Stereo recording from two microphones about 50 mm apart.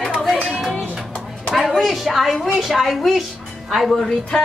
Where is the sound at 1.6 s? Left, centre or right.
Centre.